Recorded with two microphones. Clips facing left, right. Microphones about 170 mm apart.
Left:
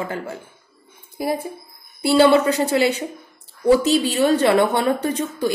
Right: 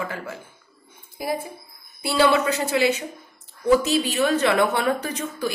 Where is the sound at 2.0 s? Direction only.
30° left (ahead or behind).